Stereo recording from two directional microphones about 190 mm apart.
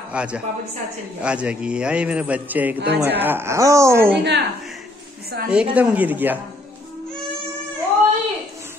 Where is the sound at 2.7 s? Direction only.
60° right (ahead or behind).